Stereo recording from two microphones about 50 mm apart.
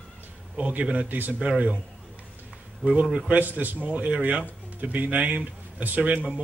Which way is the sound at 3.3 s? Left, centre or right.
Right.